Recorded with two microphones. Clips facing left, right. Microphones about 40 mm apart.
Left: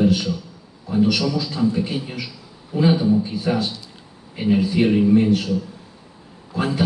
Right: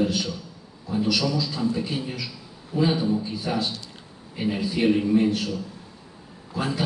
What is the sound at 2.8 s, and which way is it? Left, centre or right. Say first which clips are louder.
A man's voice: left 5 dB; left.